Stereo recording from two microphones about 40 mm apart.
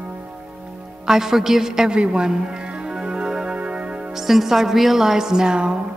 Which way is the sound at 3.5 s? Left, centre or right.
Right.